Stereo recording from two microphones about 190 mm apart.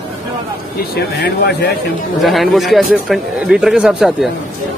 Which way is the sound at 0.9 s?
60° left (ahead or behind).